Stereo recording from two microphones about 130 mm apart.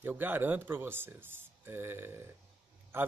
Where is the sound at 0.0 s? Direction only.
15° right (ahead or behind).